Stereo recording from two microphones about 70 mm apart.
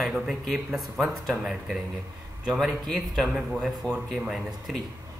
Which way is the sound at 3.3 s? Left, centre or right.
Centre.